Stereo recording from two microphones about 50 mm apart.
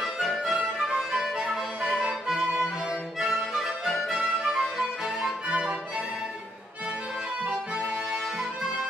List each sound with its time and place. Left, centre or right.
0.0 s music: centre
5.5 s music: centre